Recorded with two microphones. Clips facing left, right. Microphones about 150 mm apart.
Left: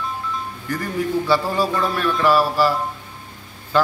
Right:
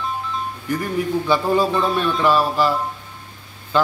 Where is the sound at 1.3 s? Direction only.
20° right (ahead or behind).